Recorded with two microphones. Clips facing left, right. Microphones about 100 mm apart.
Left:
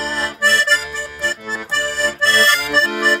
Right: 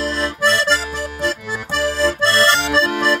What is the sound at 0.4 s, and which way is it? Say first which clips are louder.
Accordion: even; 25° right (ahead or behind).